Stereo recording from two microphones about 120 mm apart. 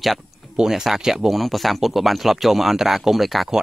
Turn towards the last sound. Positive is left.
turn(degrees=0)  # may be behind; listen again after turning